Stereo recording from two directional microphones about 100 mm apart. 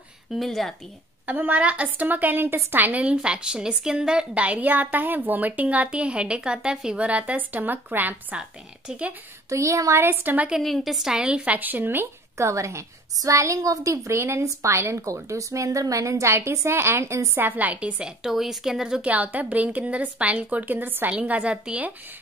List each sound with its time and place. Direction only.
0.3 s a woman's voice: centre (ahead or behind)
1.2 s a woman's voice: 15° right (ahead or behind)
9.5 s speech: 30° right (ahead or behind); by 10.6 s 15° right (ahead or behind)
10.6 s a woman's voice: centre (ahead or behind)